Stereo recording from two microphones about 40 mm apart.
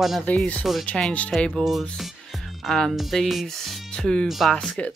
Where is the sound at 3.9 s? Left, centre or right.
Left.